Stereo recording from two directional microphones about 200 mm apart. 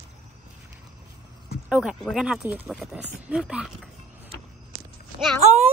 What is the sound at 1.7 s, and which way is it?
Speech, 5° right (ahead or behind).